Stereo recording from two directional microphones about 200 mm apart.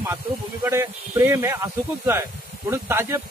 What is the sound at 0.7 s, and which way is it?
Speech, 15° right (ahead or behind).